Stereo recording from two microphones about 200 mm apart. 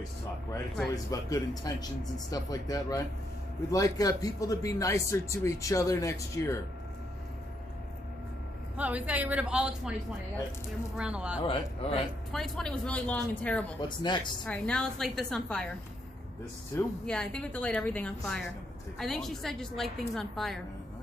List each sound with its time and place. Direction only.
0.9 s speech: 20° left (ahead or behind)
8.7 s speech: 5° right (ahead or behind)
11.0 s speech: 5° right (ahead or behind)
11.4 s speech: 30° left (ahead or behind)
12.3 s speech: centre (ahead or behind)
13.7 s speech: 20° left (ahead or behind)
14.4 s speech: 5° left (ahead or behind)
17.0 s speech: 5° left (ahead or behind)